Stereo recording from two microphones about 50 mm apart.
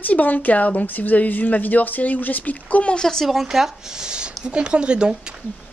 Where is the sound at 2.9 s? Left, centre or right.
Centre.